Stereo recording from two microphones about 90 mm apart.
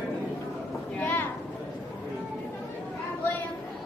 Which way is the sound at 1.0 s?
20° left (ahead or behind).